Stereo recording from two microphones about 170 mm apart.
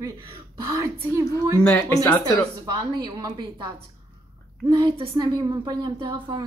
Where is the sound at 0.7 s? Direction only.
20° right (ahead or behind).